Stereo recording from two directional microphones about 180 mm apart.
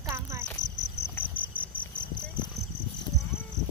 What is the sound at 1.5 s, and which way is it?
Cricket, 25° left (ahead or behind).